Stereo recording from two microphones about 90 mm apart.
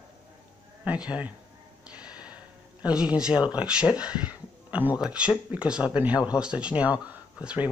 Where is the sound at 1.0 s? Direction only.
15° right (ahead or behind).